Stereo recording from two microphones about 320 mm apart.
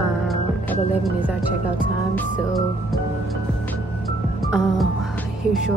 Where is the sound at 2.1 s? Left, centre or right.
Centre.